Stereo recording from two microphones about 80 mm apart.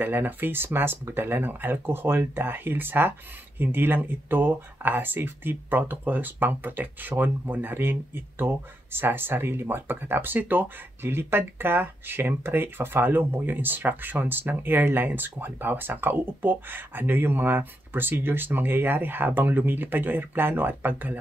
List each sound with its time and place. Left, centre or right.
0.0 s speech: right